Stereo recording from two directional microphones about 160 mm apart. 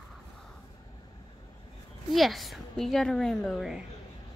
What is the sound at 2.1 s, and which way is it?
A woman's voice, centre (ahead or behind).